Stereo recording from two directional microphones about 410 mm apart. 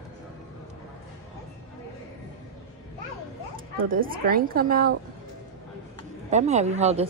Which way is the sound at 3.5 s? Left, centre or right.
Right.